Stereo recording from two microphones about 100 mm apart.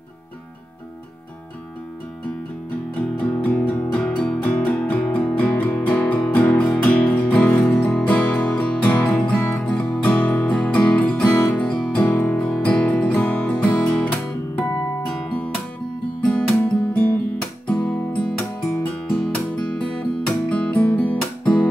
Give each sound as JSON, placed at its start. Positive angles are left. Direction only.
{"t": 3.2, "sound": "music", "side_deg": 15}
{"t": 16.3, "sound": "music", "side_deg": 10}